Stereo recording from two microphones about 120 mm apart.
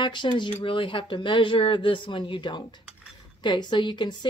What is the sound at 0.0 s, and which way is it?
A woman's voice, 40° left (ahead or behind).